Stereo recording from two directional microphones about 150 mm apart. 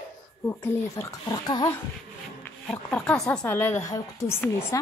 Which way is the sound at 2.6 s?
5° left (ahead or behind).